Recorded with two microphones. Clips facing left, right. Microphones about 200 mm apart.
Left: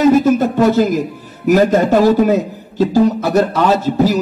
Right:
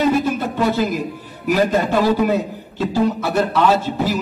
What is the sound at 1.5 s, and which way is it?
A man's voice, 45° left (ahead or behind).